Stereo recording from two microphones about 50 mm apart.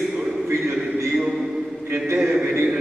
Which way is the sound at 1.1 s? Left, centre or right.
Centre.